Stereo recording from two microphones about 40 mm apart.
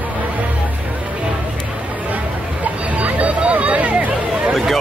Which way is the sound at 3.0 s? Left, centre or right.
Right.